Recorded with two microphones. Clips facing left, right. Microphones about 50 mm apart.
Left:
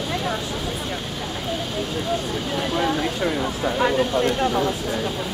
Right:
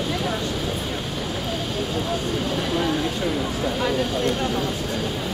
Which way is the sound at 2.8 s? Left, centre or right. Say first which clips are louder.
Left 3 dB; left.